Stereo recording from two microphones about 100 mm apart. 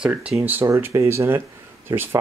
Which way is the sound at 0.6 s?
30° right (ahead or behind).